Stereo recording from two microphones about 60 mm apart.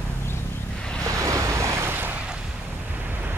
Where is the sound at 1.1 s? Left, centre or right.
Right.